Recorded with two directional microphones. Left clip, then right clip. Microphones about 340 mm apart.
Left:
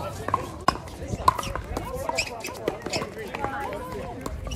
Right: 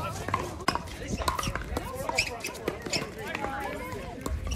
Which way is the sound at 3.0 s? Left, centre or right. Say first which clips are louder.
Left 3 dB; left.